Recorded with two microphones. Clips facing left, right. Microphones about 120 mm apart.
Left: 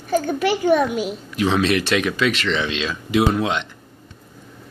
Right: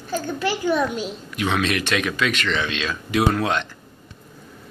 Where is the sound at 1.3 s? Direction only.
30° left (ahead or behind).